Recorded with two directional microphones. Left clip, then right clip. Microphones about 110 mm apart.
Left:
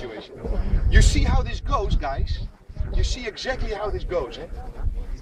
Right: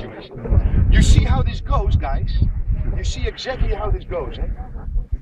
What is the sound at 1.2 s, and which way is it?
Speech, 35° left (ahead or behind).